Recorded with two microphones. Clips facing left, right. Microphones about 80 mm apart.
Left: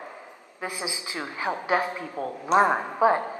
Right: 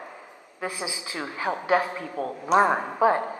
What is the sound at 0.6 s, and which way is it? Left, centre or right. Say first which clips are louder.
A man's voice: right 1 dB; centre.